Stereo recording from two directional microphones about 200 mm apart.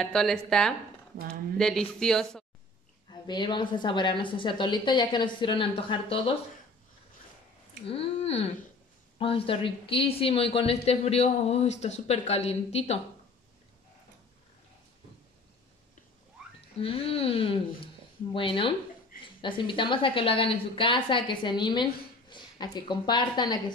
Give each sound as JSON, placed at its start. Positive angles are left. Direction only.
{"t": 0.0, "sound": "speech", "side_deg": 0}
{"t": 3.1, "sound": "a woman's voice", "side_deg": 20}
{"t": 7.8, "sound": "a sound", "side_deg": 30}
{"t": 9.2, "sound": "speech", "side_deg": 25}
{"t": 16.8, "sound": "a woman's voice", "side_deg": 30}